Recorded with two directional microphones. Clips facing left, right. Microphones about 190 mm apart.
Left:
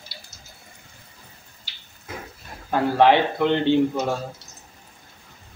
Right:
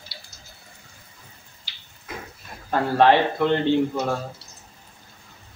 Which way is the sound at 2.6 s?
15° left (ahead or behind).